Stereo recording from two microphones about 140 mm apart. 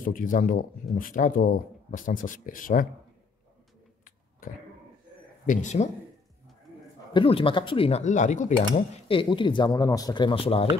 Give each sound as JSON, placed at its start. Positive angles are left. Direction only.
{"t": 0.0, "sound": "speech", "side_deg": 75}
{"t": 5.5, "sound": "speech", "side_deg": 60}
{"t": 7.2, "sound": "speech", "side_deg": 40}
{"t": 8.0, "sound": "speech", "side_deg": 60}
{"t": 9.0, "sound": "speech", "side_deg": 40}